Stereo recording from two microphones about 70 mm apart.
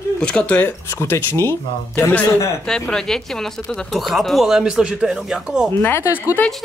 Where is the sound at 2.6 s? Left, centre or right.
Centre.